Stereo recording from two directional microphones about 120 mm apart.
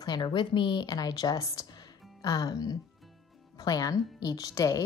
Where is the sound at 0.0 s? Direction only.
40° left (ahead or behind).